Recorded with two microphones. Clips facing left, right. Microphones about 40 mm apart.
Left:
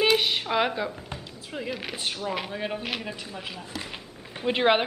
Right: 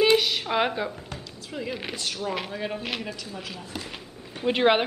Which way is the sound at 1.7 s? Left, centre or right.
Centre.